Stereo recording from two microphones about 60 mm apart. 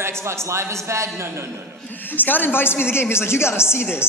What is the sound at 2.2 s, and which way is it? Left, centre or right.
A woman's voice, left.